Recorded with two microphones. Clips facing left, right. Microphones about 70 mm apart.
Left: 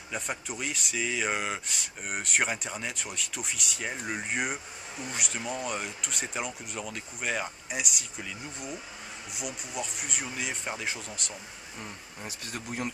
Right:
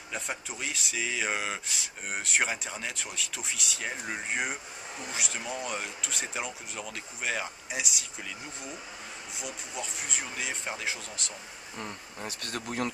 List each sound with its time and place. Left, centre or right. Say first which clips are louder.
0.1 s speech: left 2 dB; centre
12.3 s speech: right 2 dB; right